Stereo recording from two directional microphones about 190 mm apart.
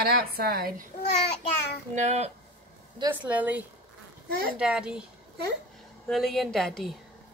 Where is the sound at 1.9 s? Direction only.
35° right (ahead or behind).